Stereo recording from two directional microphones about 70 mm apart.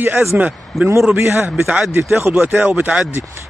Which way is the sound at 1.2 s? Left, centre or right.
Right.